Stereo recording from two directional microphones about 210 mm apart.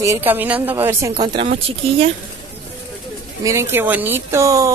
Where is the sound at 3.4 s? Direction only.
10° right (ahead or behind).